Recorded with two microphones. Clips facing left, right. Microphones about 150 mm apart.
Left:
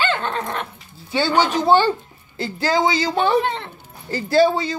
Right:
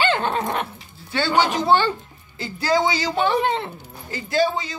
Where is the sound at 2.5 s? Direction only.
25° left (ahead or behind).